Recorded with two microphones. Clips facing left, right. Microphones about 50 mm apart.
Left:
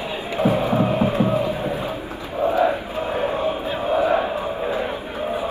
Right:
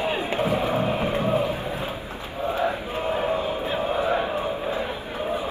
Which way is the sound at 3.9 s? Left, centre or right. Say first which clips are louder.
Left 7 dB; left.